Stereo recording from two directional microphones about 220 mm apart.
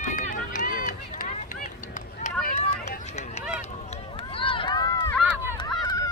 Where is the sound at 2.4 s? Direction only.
30° left (ahead or behind).